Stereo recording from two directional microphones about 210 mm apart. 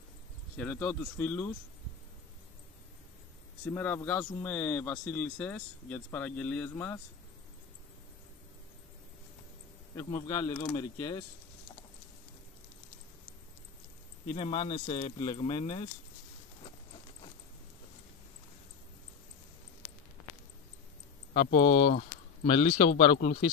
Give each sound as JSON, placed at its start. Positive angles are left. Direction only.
{"t": 0.6, "sound": "speech", "side_deg": 10}
{"t": 3.7, "sound": "speech", "side_deg": 10}
{"t": 9.9, "sound": "speech", "side_deg": 15}
{"t": 14.3, "sound": "speech", "side_deg": 25}
{"t": 21.3, "sound": "speech", "side_deg": 40}